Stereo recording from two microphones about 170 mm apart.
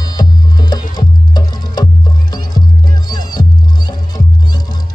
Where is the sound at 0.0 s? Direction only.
25° left (ahead or behind).